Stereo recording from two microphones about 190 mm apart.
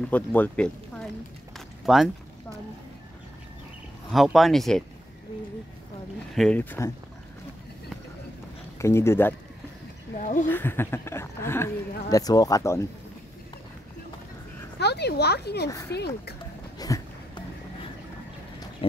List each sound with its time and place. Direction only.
0.1 s speech: 10° left (ahead or behind)
4.1 s speech: centre (ahead or behind)
6.3 s speech: 5° left (ahead or behind)
8.7 s speech: 15° left (ahead or behind)
10.1 s speech: 40° left (ahead or behind)
10.5 s speech: 10° left (ahead or behind)
14.8 s speech: 60° left (ahead or behind)
16.7 s a sound: 20° left (ahead or behind)
18.8 s speech: 30° left (ahead or behind)